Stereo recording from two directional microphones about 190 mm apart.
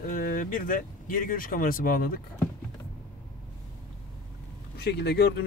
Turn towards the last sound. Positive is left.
turn(degrees=60)  # may be behind; listen again after turning